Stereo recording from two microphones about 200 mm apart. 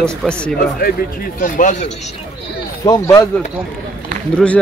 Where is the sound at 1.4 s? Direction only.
40° left (ahead or behind).